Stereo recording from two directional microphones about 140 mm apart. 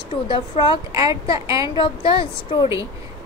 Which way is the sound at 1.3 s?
25° right (ahead or behind).